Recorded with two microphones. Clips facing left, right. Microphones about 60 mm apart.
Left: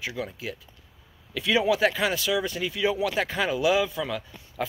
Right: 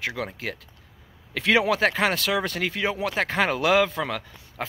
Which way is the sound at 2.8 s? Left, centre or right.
Right.